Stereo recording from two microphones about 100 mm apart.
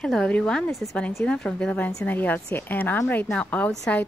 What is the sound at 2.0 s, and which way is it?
Speech, 20° left (ahead or behind).